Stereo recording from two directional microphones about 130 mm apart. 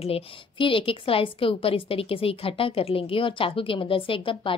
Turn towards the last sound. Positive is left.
turn(degrees=40)  # may be behind; listen again after turning